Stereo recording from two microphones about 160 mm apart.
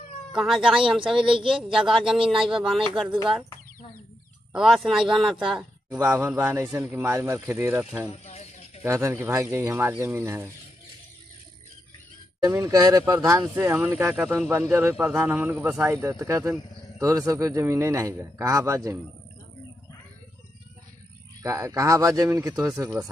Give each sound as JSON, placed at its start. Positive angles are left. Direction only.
{"t": 0.3, "sound": "speech", "side_deg": -5}
{"t": 4.5, "sound": "speech", "side_deg": -5}
{"t": 5.9, "sound": "a man's voice", "side_deg": -15}
{"t": 8.3, "sound": "a sound", "side_deg": 40}
{"t": 8.8, "sound": "a man's voice", "side_deg": -15}
{"t": 12.4, "sound": "a man's voice", "side_deg": -20}
{"t": 21.4, "sound": "speech", "side_deg": -20}
{"t": 22.7, "sound": "a man's voice", "side_deg": -10}